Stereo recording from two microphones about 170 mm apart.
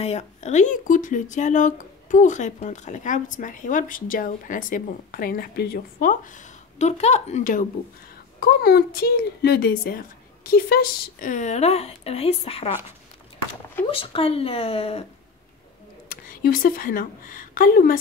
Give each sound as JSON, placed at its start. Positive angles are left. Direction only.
{"t": 0.0, "sound": "speech", "side_deg": 40}
{"t": 8.4, "sound": "speech", "side_deg": 65}
{"t": 13.8, "sound": "speech", "side_deg": 35}
{"t": 16.1, "sound": "speech", "side_deg": 55}